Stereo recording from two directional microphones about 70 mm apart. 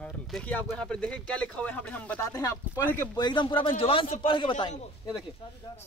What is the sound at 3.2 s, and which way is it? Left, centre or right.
Speech, left.